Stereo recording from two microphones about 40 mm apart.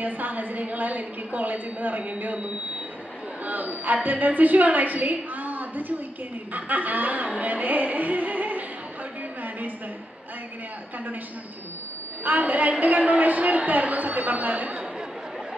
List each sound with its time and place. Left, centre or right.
0.0 s a woman's voice: right
6.5 s music: right
12.3 s a woman's voice: right